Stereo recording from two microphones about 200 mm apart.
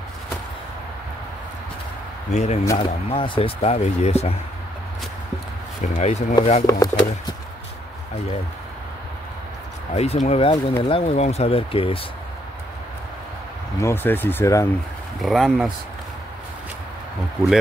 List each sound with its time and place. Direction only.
2.3 s speech: 35° left (ahead or behind)
2.6 s speech: 15° left (ahead or behind)
3.1 s speech: 25° left (ahead or behind)
5.8 s speech: 35° left (ahead or behind)
6.6 s speech: 15° left (ahead or behind)
9.9 s speech: 35° left (ahead or behind)
13.7 s speech: 10° left (ahead or behind)
15.1 s speech: centre (ahead or behind)